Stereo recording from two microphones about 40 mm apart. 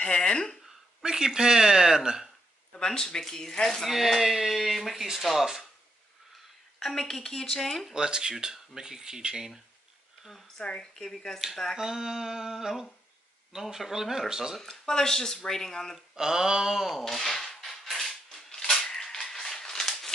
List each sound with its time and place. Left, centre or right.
0.0 s speech: left
1.0 s speech: centre
2.7 s speech: centre
3.8 s speech: centre
6.8 s speech: centre
7.9 s speech: centre
10.8 s speech: centre
11.7 s speech: centre
14.6 s speech: centre
16.2 s speech: centre
17.0 s a sound: centre
18.5 s a sound: centre